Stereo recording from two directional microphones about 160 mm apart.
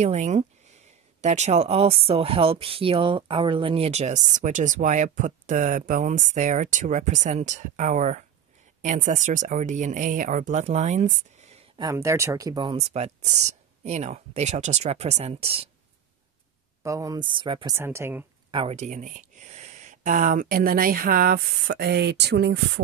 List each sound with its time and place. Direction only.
0.0 s speech: 45° right (ahead or behind)
11.8 s speech: 20° right (ahead or behind)
12.7 s speech: 40° right (ahead or behind)
16.8 s speech: 20° right (ahead or behind)
17.7 s speech: 15° right (ahead or behind)
18.5 s speech: 35° right (ahead or behind)
18.8 s speech: 50° right (ahead or behind); by 22.6 s 90° right